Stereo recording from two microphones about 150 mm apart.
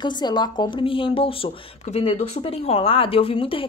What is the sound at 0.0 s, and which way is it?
Speech, 30° left (ahead or behind).